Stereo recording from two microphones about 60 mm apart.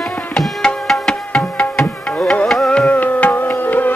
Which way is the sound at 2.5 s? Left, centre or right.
Centre.